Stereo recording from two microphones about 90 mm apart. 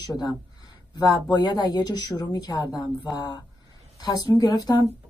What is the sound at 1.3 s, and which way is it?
Speech, 45° left (ahead or behind).